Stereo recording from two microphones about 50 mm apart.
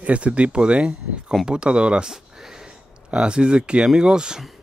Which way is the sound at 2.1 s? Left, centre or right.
Centre.